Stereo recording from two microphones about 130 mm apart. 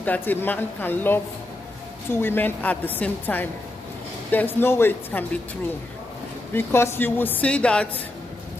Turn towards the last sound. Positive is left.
turn(degrees=10)  # may be behind; listen again after turning